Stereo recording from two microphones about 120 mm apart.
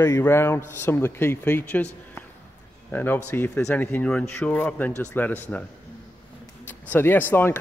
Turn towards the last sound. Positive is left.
turn(degrees=20)  # may be behind; listen again after turning